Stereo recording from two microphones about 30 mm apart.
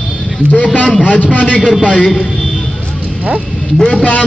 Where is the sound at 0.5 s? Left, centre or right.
Left.